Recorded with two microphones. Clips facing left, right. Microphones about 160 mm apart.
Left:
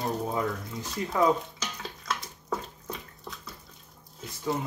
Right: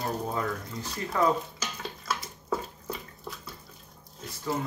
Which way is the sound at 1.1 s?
10° left (ahead or behind).